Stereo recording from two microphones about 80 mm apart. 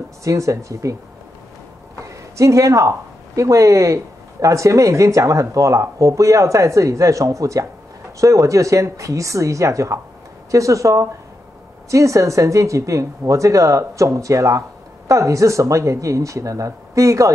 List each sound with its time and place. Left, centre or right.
0.2 s speech: right
2.0 s a sound: right
3.3 s speech: right